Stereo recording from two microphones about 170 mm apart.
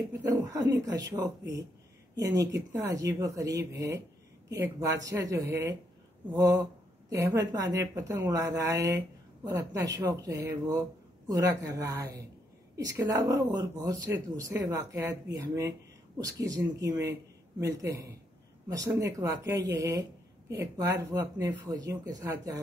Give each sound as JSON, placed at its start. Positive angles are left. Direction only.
{"t": 0.3, "sound": "speech", "side_deg": -20}